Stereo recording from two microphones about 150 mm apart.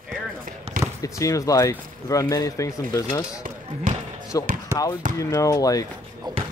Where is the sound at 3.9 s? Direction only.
65° right (ahead or behind).